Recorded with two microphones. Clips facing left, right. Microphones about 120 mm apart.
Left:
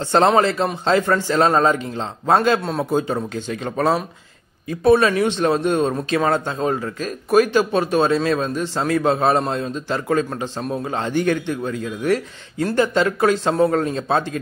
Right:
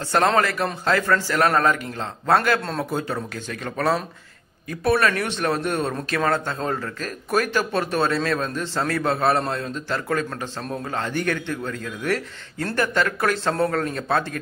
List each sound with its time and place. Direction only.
0.1 s a man's voice: 25° left (ahead or behind)